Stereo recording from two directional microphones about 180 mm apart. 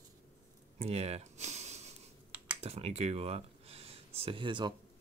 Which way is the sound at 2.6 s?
35° right (ahead or behind).